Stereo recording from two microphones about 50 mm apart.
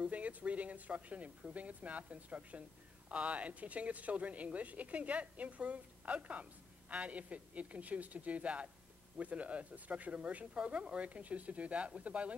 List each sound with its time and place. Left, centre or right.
0.0 s speech: right